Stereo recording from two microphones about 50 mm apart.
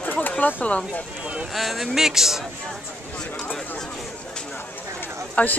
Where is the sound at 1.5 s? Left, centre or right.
Centre.